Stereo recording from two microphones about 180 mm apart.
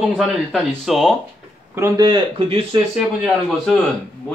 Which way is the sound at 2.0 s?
25° right (ahead or behind).